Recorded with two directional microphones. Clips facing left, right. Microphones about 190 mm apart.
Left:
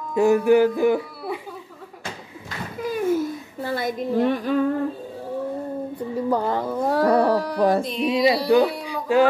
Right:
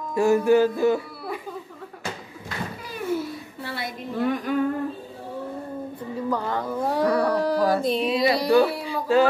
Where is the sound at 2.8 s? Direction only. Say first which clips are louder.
Left 7 dB; 45° left (ahead or behind).